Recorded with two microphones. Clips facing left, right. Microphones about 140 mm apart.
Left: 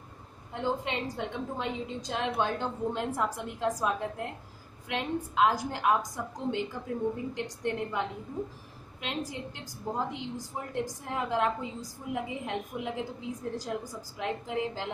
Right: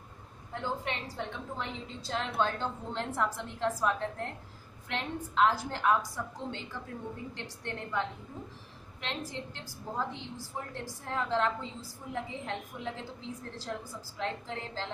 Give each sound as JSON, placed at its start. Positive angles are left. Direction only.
{"t": 0.5, "sound": "a woman's voice", "side_deg": 15}